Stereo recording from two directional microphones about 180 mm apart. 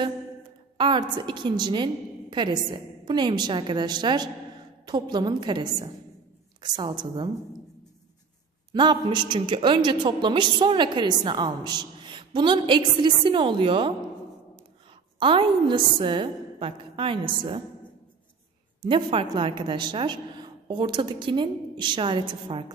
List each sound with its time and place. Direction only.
0.7 s a woman's voice: 25° right (ahead or behind)
8.7 s a woman's voice: 25° right (ahead or behind)
15.1 s a woman's voice: 30° right (ahead or behind)
18.8 s a woman's voice: 30° right (ahead or behind)